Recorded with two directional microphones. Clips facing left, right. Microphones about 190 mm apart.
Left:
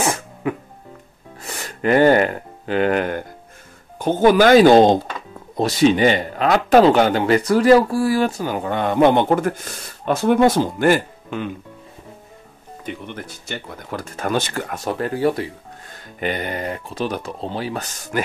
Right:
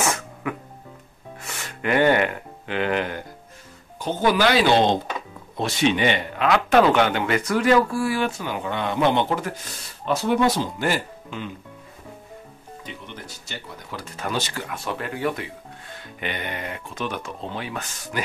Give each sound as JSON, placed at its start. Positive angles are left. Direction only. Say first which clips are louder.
{"t": 0.0, "sound": "music", "louder": "left 4 dB", "side_deg": 30}
{"t": 1.4, "sound": "speech", "louder": "left 6 dB", "side_deg": 35}
{"t": 12.8, "sound": "speech", "louder": "left 8 dB", "side_deg": 55}